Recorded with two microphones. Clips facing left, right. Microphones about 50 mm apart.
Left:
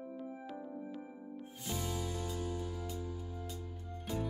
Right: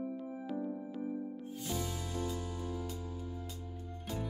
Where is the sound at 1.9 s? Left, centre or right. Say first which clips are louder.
Right 1 dB; right.